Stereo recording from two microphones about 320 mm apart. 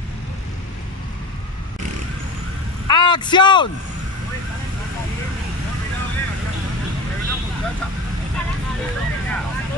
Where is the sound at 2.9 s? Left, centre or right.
Centre.